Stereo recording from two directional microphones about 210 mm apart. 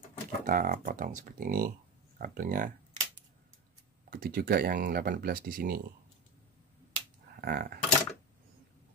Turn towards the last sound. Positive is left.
turn(degrees=-45)  # may be behind; listen again after turning